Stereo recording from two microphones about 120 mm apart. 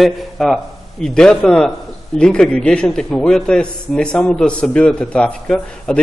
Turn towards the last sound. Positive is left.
turn(degrees=5)  # may be behind; listen again after turning